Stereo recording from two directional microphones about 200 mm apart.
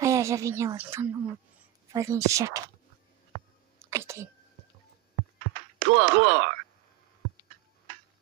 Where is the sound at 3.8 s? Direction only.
15° right (ahead or behind).